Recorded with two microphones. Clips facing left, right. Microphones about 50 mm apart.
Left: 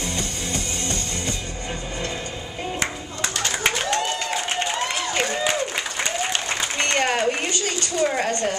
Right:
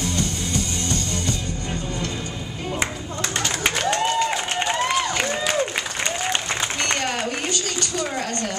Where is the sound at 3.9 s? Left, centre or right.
Centre.